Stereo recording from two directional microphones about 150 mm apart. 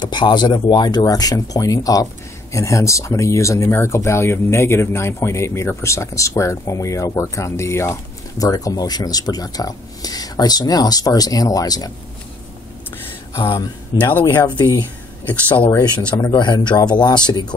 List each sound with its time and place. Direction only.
0.0 s speech: 30° left (ahead or behind)
13.4 s speech: 20° left (ahead or behind)
14.6 s speech: 30° left (ahead or behind)
16.1 s speech: 25° left (ahead or behind)